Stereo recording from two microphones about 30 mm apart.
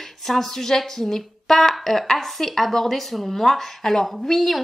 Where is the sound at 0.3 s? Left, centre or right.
Centre.